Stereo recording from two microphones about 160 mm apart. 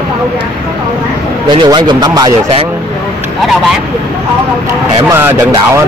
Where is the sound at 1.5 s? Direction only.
25° right (ahead or behind).